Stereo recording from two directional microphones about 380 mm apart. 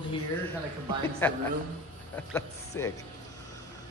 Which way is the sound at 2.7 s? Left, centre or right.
Centre.